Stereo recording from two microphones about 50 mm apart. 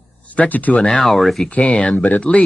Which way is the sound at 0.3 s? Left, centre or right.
Left.